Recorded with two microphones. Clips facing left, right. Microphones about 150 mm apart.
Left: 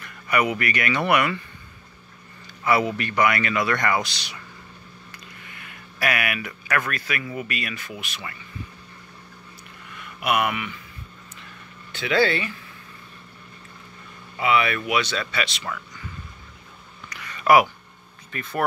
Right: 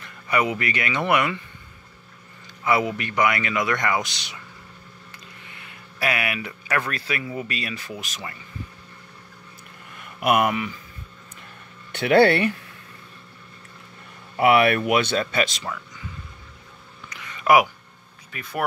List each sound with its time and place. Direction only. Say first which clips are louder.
0.0 s speech: even; 25° right (ahead or behind)
2.6 s speech: left 1 dB; 20° right (ahead or behind)
5.6 s speech: even; 25° right (ahead or behind)
9.9 s speech: right 3 dB; 45° right (ahead or behind)
11.9 s speech: right 5 dB; 60° right (ahead or behind)
14.3 s speech: right 5 dB; 60° right (ahead or behind)
17.1 s a sound: left 1 dB; 20° right (ahead or behind)
18.3 s speech: left 2 dB; 10° right (ahead or behind)